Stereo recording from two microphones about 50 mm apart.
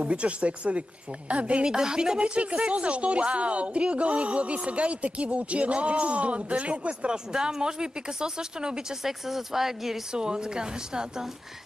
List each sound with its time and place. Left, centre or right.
0.0 s speech: right